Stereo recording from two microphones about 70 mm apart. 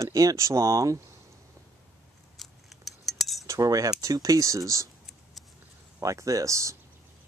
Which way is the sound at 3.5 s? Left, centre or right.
Right.